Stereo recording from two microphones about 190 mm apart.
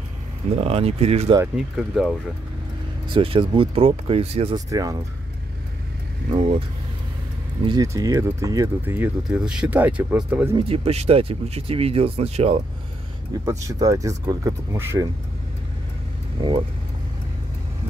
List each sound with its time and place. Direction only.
0.5 s speech: 30° right (ahead or behind)
1.8 s speech: 5° right (ahead or behind)
3.1 s speech: 30° right (ahead or behind)
4.6 s speech: 20° right (ahead or behind)
6.3 s speech: 30° right (ahead or behind)
7.6 s speech: 20° right (ahead or behind)
10.5 s speech: 30° right (ahead or behind)
13.5 s speech: 15° right (ahead or behind)
16.3 s speech: 25° right (ahead or behind)